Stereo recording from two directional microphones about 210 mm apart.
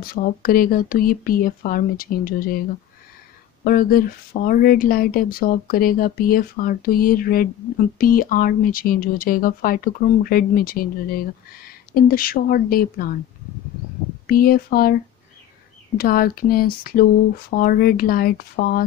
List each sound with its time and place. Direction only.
0.0 s speech: 45° left (ahead or behind)
3.6 s speech: 45° left (ahead or behind)
14.2 s speech: 45° left (ahead or behind)
16.0 s speech: 45° left (ahead or behind)